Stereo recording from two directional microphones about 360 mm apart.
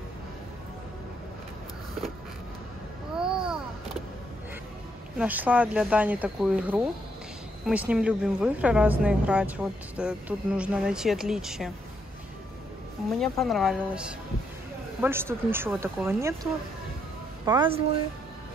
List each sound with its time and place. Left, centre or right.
3.2 s a sound: centre
5.1 s speech: centre
13.2 s speech: centre
17.5 s speech: centre